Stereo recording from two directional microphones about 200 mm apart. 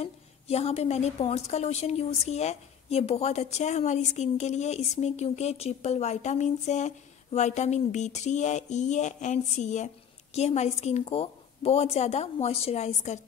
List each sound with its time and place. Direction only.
0.0 s a woman's voice: 30° left (ahead or behind)